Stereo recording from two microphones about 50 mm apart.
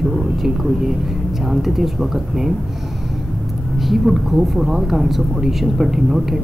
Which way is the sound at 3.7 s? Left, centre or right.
Centre.